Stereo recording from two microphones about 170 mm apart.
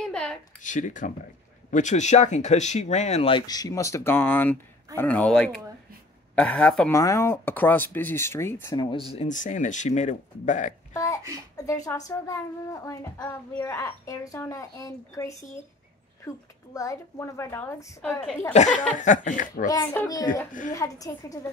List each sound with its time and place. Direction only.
0.0 s a sound: 5° left (ahead or behind)
0.6 s speech: 45° left (ahead or behind); by 6.9 s 5° left (ahead or behind)
6.9 s speech: 20° left (ahead or behind)
9.1 s speech: 45° left (ahead or behind)
10.9 s a sound: 20° left (ahead or behind)
11.5 s speech: 20° left (ahead or behind)
18.5 s speech: 45° left (ahead or behind)
19.7 s speech: 15° left (ahead or behind)